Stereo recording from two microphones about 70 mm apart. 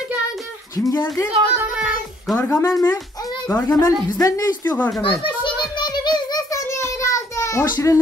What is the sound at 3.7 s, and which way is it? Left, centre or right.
Speech, left.